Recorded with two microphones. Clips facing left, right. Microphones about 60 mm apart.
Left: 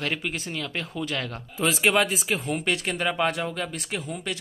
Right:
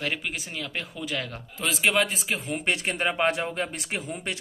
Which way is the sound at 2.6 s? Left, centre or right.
Centre.